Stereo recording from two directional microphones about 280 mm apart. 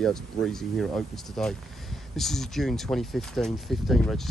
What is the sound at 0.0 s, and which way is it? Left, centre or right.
Speech, centre.